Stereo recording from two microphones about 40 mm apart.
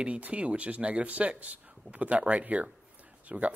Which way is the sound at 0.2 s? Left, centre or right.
Right.